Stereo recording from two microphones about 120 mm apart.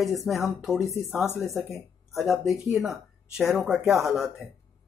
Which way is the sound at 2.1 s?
Centre (ahead or behind).